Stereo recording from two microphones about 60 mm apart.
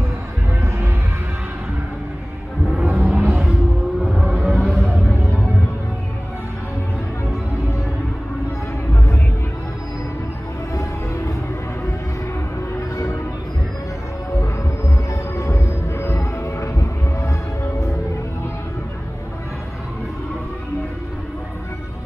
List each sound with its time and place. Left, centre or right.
2.8 s music: right
4.0 s music: centre
4.6 s music: centre
10.7 s music: left
15.0 s music: left